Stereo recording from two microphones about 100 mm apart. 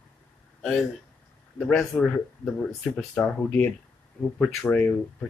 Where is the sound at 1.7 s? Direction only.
10° left (ahead or behind).